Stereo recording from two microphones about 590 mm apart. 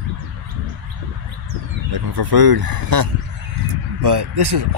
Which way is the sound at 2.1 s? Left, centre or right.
Right.